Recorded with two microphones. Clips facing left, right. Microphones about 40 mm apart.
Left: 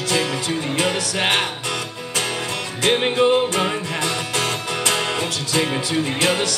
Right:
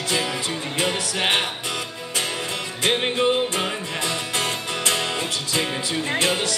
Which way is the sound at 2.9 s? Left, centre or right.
Left.